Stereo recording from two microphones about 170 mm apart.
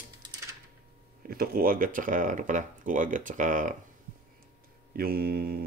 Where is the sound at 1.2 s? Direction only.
60° right (ahead or behind).